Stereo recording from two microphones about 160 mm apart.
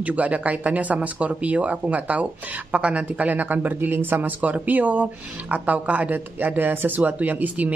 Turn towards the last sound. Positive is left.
turn(degrees=-10)  # may be behind; listen again after turning